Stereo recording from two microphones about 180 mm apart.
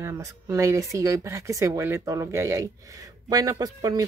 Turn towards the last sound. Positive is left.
turn(degrees=-20)  # may be behind; listen again after turning